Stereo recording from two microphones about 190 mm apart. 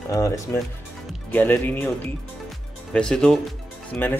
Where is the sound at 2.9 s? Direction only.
5° left (ahead or behind).